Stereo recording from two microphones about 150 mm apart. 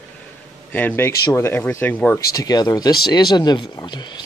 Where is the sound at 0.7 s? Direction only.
15° left (ahead or behind).